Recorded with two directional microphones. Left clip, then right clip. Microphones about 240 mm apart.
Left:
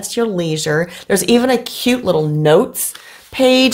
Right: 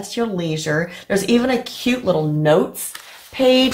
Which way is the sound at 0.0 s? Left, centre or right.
Left.